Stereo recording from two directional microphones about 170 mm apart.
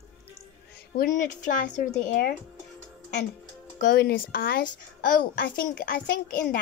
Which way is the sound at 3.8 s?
60° left (ahead or behind).